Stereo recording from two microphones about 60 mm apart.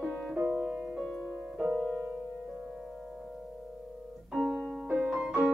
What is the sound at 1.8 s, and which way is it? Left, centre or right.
Music, centre.